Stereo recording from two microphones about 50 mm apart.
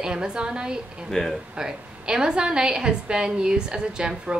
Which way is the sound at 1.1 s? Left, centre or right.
Centre.